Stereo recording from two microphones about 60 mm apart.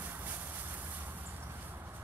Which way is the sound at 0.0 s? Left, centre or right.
Right.